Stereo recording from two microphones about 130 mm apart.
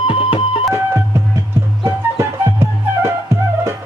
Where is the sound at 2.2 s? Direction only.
20° right (ahead or behind).